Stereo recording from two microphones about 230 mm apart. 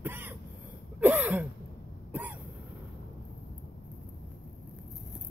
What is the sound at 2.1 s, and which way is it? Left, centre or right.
Cough, centre.